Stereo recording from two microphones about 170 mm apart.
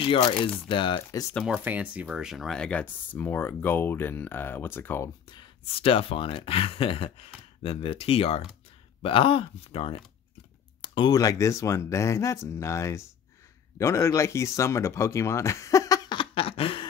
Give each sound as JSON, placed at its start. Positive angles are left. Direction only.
{"t": 0.0, "sound": "speech", "side_deg": 30}
{"t": 1.4, "sound": "speech", "side_deg": -5}
{"t": 5.2, "sound": "speech", "side_deg": 25}